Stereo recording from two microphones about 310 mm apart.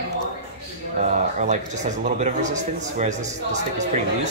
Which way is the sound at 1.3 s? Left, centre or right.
Right.